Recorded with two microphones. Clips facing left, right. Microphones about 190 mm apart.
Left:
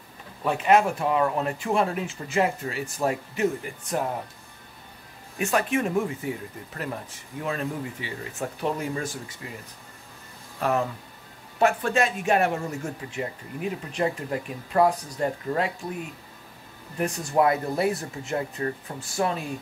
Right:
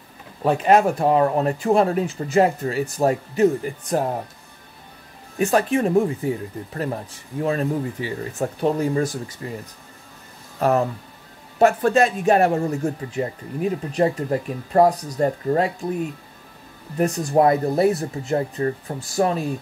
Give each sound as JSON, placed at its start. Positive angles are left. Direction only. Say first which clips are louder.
{"t": 0.4, "sound": "speech", "louder": "right 4 dB", "side_deg": -35}
{"t": 5.4, "sound": "speech", "louder": "right 6 dB", "side_deg": -35}
{"t": 10.6, "sound": "speech", "louder": "right 6 dB", "side_deg": -40}
{"t": 17.0, "sound": "speech", "louder": "right 5 dB", "side_deg": -35}